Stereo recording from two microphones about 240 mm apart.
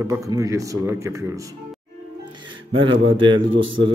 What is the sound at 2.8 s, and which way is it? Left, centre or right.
A man's voice, right.